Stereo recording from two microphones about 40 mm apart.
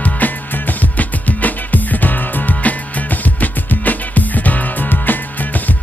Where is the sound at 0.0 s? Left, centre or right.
Left.